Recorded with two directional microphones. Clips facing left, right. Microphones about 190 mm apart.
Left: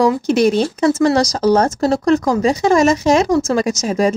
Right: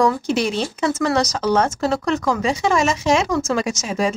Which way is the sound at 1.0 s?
35° left (ahead or behind).